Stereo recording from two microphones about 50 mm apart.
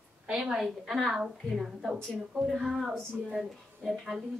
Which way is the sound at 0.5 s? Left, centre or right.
Centre.